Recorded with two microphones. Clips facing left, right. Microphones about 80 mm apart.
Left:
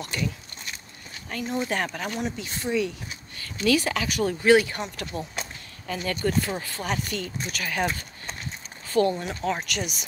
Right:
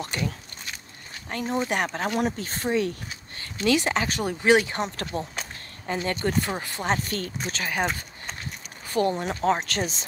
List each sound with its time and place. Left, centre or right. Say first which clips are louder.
0.0 s speech: even; right
1.3 s speech: right 2 dB; right
1.7 s speech: right 1 dB; right
2.1 s speech: right 4 dB; right
3.3 s speech: even; right
7.2 s speech: right 1 dB; right
7.5 s speech: even; right
8.8 s a sound: left 2 dB; right
9.1 s speech: right 4 dB; right